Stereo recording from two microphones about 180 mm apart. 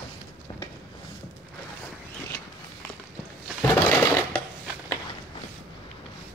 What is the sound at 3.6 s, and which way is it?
Sewing machine, 15° left (ahead or behind).